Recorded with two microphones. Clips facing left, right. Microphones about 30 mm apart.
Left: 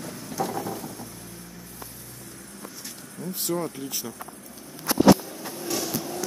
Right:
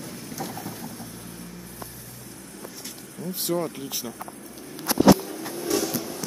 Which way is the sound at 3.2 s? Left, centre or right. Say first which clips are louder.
Right 2 dB; centre.